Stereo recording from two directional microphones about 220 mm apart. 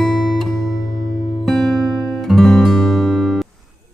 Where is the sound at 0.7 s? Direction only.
15° right (ahead or behind).